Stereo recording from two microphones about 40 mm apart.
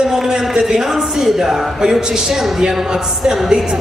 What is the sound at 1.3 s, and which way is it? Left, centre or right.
Speech, centre.